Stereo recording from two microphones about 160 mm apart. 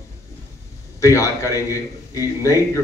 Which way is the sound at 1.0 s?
20° left (ahead or behind).